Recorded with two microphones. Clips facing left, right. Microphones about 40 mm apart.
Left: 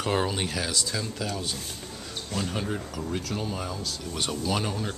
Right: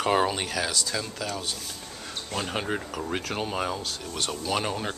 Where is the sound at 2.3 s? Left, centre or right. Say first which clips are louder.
Right 1 dB; right.